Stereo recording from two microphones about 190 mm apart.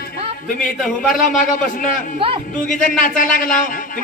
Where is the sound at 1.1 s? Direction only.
45° left (ahead or behind).